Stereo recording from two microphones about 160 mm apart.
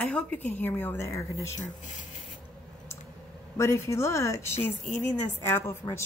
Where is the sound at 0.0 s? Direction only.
10° left (ahead or behind).